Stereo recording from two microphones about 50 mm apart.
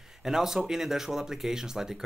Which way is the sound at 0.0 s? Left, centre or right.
Centre.